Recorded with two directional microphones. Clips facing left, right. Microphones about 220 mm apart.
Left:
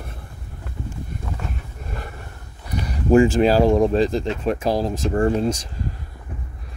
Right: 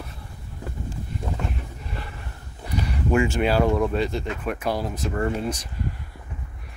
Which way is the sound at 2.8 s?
35° left (ahead or behind).